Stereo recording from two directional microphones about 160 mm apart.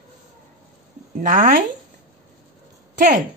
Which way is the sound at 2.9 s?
55° right (ahead or behind).